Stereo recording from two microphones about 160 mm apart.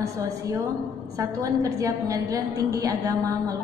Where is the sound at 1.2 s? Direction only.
20° right (ahead or behind).